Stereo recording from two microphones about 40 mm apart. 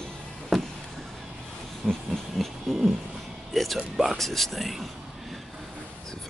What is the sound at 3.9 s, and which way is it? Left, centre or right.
Speech, centre.